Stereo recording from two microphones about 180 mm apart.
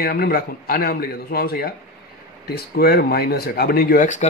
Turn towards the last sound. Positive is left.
turn(degrees=45)  # may be behind; listen again after turning